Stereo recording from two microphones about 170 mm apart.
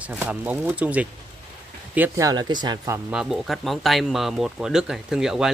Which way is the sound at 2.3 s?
25° right (ahead or behind).